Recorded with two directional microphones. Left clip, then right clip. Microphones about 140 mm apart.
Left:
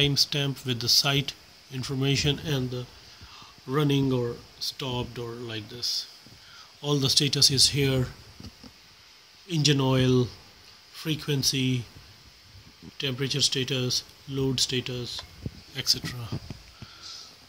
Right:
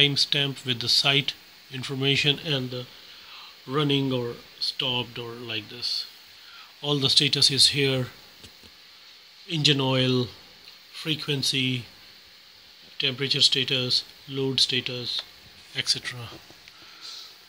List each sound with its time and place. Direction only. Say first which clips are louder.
0.0 s speech: right 3 dB; 5° right (ahead or behind)
9.5 s speech: right 2 dB; 5° right (ahead or behind)
12.9 s speech: right 5 dB; 5° right (ahead or behind)
15.7 s speech: right 1 dB; 10° right (ahead or behind)